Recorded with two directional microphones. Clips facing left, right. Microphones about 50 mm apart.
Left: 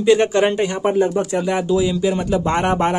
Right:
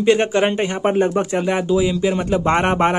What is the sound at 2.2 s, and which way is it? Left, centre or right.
Speech, right.